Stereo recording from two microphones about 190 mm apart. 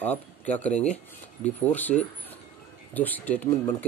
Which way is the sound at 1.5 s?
10° left (ahead or behind).